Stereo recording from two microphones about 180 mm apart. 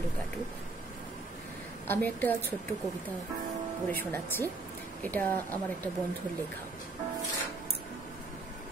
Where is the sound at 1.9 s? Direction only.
10° left (ahead or behind).